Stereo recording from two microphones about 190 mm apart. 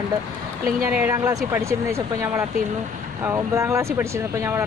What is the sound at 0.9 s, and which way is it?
Speech, 15° right (ahead or behind).